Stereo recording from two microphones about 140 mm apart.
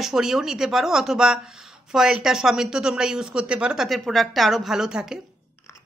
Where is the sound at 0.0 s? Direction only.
5° right (ahead or behind).